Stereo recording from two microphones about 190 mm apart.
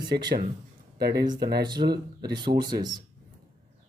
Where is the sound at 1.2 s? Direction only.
20° right (ahead or behind).